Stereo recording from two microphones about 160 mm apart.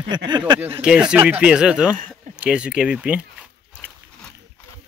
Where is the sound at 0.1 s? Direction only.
25° right (ahead or behind).